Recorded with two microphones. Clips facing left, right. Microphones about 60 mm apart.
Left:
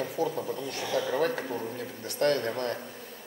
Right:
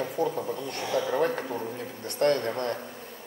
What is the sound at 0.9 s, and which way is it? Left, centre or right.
Speech, right.